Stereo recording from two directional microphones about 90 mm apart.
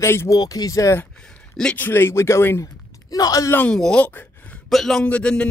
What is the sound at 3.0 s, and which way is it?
Speech, 45° left (ahead or behind).